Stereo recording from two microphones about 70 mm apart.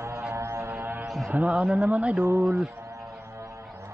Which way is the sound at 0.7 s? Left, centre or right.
Right.